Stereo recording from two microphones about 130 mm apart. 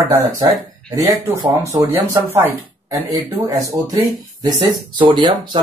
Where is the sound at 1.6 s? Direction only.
25° right (ahead or behind).